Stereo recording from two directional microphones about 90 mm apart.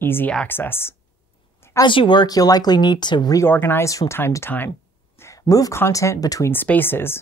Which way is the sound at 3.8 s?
35° left (ahead or behind).